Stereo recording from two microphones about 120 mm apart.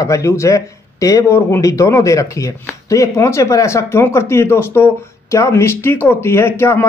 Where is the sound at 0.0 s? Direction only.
25° left (ahead or behind).